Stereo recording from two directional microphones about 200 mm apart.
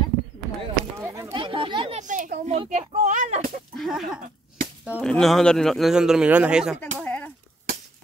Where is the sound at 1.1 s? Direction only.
20° right (ahead or behind); by 3.5 s 35° right (ahead or behind).